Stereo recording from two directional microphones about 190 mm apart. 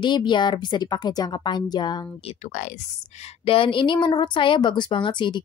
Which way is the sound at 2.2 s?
40° left (ahead or behind).